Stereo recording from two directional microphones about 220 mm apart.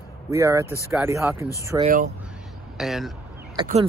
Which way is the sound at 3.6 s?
20° right (ahead or behind).